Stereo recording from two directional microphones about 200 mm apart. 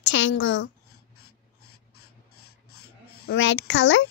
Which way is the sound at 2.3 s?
90° left.